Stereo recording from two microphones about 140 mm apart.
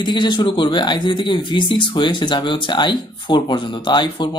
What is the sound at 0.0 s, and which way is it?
Speech, 30° left (ahead or behind).